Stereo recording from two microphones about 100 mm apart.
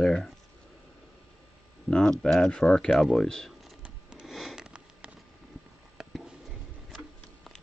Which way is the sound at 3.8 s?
5° right (ahead or behind).